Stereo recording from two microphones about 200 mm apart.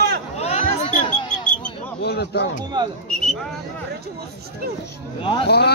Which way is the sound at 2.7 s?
20° right (ahead or behind).